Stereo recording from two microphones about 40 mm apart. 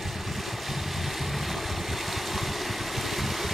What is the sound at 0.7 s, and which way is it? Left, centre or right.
Vehicle, centre.